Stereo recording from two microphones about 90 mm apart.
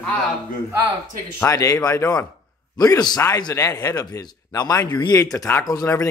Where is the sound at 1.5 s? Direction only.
40° left (ahead or behind).